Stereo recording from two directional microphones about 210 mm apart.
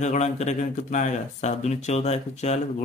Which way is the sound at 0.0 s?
35° left (ahead or behind).